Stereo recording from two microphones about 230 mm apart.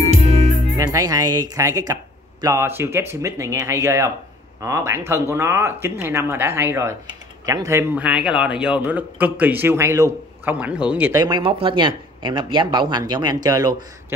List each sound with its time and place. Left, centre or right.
0.7 s speech: centre